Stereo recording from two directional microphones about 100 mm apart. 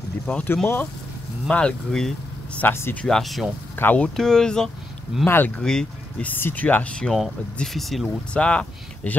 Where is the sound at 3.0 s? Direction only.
5° left (ahead or behind).